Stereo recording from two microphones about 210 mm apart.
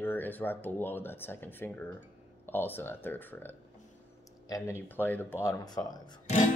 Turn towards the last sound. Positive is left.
turn(degrees=20)  # may be behind; listen again after turning